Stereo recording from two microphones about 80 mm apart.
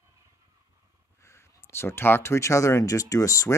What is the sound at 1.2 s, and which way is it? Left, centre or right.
Speech, left.